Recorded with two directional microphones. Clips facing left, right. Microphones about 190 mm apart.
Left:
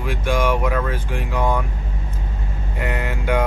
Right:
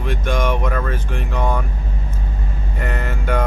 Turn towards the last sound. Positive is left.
turn(degrees=10)  # may be behind; listen again after turning